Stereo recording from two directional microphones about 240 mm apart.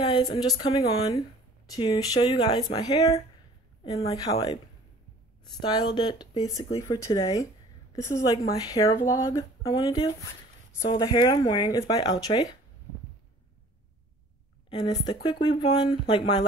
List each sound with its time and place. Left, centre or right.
0.0 s speech: centre
5.6 s speech: centre
14.7 s speech: centre